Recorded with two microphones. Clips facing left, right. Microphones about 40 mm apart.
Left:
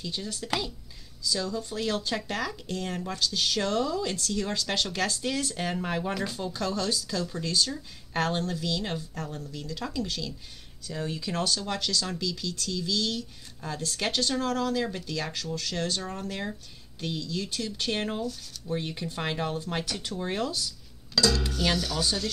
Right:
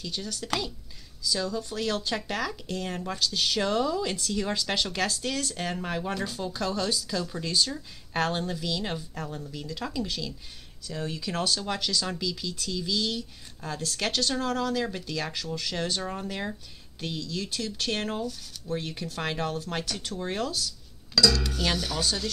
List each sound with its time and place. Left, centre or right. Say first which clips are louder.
0.0 s speech: even; centre
1.2 s speech: right 1 dB; centre
5.1 s speech: left 1 dB; centre
14.3 s speech: even; centre
19.8 s speech: even; left
20.2 s speech: even; centre
21.7 s speech: left 1 dB; centre